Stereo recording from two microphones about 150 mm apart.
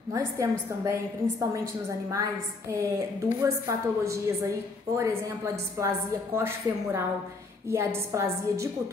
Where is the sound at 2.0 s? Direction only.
20° right (ahead or behind).